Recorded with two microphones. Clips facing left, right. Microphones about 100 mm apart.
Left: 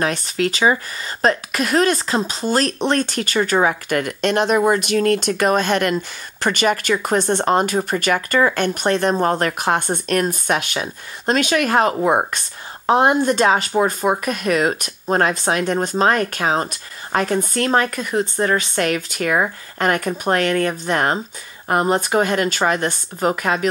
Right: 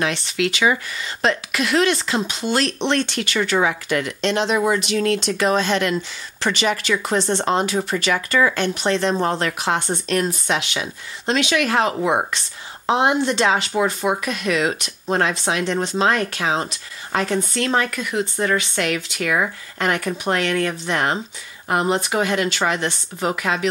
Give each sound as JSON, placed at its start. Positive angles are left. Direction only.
{"t": 0.0, "sound": "speech", "side_deg": 40}